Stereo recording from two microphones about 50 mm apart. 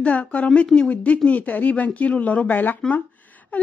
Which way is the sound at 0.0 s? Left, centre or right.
Left.